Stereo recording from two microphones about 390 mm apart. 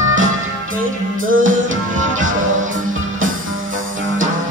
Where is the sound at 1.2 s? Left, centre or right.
Right.